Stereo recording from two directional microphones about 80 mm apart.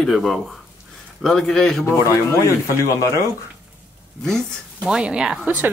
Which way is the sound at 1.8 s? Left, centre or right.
Left.